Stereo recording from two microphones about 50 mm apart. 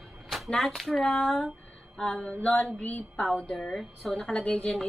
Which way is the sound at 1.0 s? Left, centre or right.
Centre.